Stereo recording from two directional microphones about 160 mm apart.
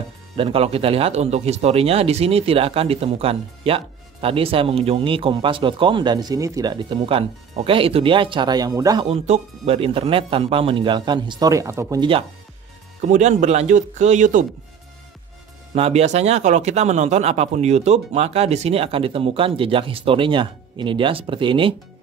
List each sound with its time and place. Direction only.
0.4 s speech: 35° right (ahead or behind)
9.1 s speech: 40° right (ahead or behind); by 12.0 s 20° right (ahead or behind)
12.0 s speech: 35° right (ahead or behind)
13.1 s speech: 50° right (ahead or behind)
15.7 s speech: 40° right (ahead or behind)